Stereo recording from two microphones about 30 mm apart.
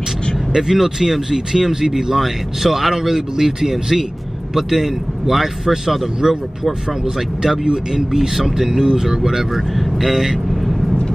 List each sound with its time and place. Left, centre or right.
0.6 s speech: centre
7.7 s speech: centre